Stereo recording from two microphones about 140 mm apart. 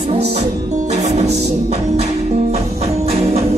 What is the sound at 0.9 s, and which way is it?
Music, 50° right (ahead or behind).